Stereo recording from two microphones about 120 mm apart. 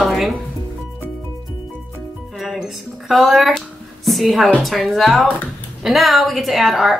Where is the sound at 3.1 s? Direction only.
Centre (ahead or behind).